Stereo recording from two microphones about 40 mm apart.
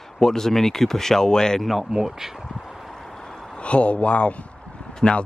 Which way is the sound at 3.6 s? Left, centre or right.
Left.